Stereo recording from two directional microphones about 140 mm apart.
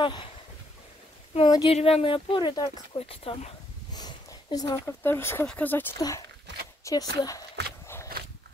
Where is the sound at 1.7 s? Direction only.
45° left (ahead or behind); by 3.0 s 30° left (ahead or behind).